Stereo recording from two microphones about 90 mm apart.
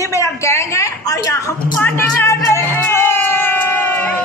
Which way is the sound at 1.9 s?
30° left (ahead or behind).